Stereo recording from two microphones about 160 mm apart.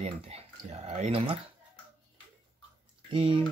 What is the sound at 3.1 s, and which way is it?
Speech, 30° right (ahead or behind).